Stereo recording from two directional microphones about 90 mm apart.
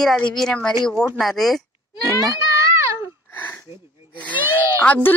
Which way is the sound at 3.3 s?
20° left (ahead or behind).